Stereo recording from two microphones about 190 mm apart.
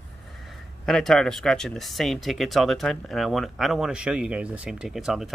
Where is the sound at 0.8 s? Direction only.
Centre (ahead or behind).